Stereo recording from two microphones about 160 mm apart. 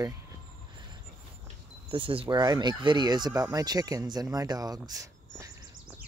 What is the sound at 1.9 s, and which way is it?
Speech, 35° right (ahead or behind).